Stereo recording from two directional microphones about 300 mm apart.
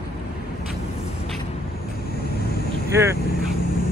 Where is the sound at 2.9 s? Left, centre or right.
Centre.